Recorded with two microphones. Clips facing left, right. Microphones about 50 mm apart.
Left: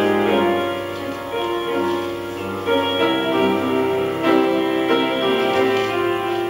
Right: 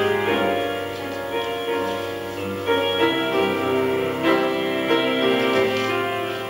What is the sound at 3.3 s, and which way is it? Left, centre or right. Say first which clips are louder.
Music: left 3 dB; left.